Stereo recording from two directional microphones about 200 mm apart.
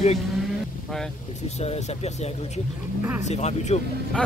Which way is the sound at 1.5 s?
35° left (ahead or behind).